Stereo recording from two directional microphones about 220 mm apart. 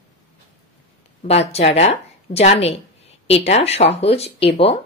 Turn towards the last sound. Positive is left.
turn(degrees=25)  # may be behind; listen again after turning